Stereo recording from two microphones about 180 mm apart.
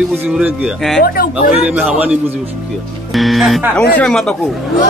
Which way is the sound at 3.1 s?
Centre (ahead or behind).